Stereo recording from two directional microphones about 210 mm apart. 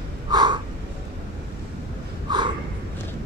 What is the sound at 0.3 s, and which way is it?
Crow, 20° right (ahead or behind).